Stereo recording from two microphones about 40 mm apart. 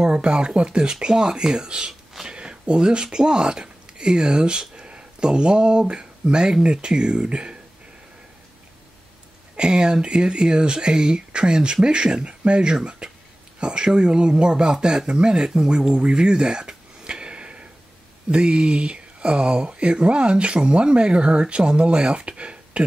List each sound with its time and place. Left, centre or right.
0.0 s speech: right
9.6 s speech: right
13.0 s a sound: centre
13.6 s speech: right